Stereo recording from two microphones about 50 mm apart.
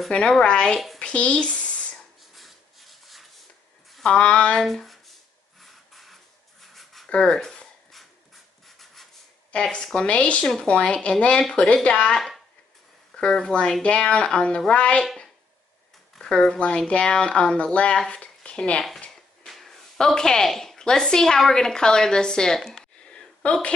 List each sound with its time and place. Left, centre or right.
0.3 s speech: centre
0.9 s a sound: left
2.3 s rub: centre
4.0 s speech: centre
4.6 s a sound: centre
7.2 s speech: centre
8.6 s rub: centre
9.5 s speech: centre
16.2 s speech: centre
19.5 s a woman's voice: centre
23.0 s a sound: centre